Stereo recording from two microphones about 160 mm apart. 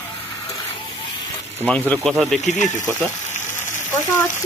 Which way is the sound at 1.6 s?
10° left (ahead or behind).